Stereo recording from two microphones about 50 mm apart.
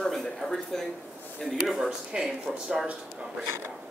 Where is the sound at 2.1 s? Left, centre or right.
Centre.